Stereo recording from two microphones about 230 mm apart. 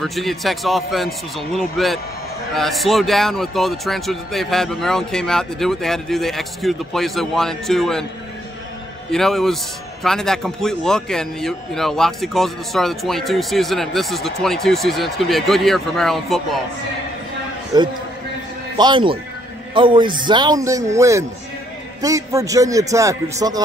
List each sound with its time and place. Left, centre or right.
0.0 s speech: centre
9.1 s speech: centre
17.7 s speech: centre